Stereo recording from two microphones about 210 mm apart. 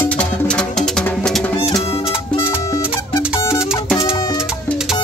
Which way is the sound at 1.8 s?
30° left (ahead or behind).